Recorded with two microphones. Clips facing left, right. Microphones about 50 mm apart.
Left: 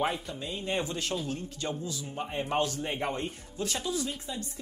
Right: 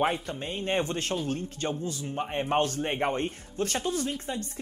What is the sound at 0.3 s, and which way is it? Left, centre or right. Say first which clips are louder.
Speech: right 3 dB; right.